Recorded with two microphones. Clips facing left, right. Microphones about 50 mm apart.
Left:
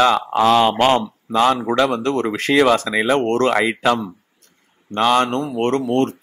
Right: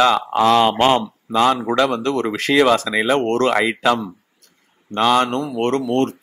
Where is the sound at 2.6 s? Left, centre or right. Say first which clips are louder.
Even; left.